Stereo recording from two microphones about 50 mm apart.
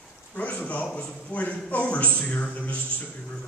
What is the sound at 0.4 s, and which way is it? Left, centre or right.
A man's voice, left.